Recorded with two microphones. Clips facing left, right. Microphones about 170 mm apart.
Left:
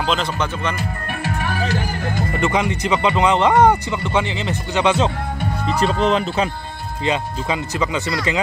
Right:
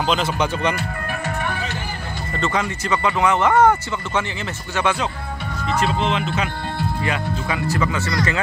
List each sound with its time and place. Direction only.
2.3 s speech: 15° left (ahead or behind)
5.9 s speech: 40° left (ahead or behind)
7.1 s speech: 20° left (ahead or behind)